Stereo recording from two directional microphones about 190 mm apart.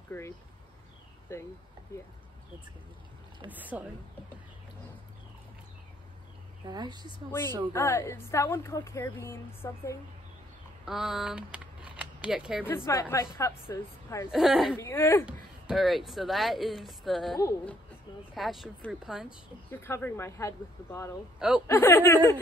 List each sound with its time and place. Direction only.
0.1 s a woman's voice: 10° left (ahead or behind)
1.3 s a woman's voice: 15° left (ahead or behind)
3.4 s speech: 10° right (ahead or behind)
6.7 s speech: 20° right (ahead or behind)
7.7 s a woman's voice: 15° left (ahead or behind)
10.9 s speech: 5° right (ahead or behind)
12.6 s a woman's voice: 15° left (ahead or behind)
14.3 s speech: centre (ahead or behind)
14.8 s a woman's voice: 15° left (ahead or behind)
15.6 s speech: centre (ahead or behind)
17.4 s a woman's voice: 15° left (ahead or behind)
18.3 s speech: centre (ahead or behind)
19.7 s a woman's voice: 10° left (ahead or behind)